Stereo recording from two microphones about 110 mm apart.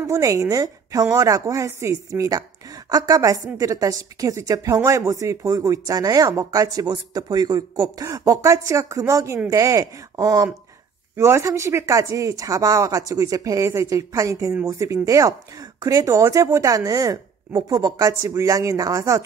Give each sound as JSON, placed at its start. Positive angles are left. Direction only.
{"t": 0.0, "sound": "a woman's voice", "side_deg": -30}